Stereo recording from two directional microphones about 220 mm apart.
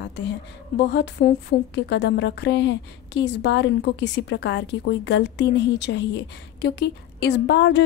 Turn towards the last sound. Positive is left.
turn(degrees=55)  # may be behind; listen again after turning